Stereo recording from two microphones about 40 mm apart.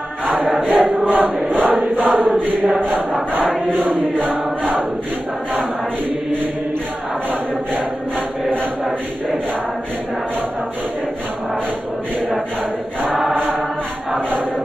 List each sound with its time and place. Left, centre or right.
0.3 s choir: right
1.0 s chant: right
13.3 s music: right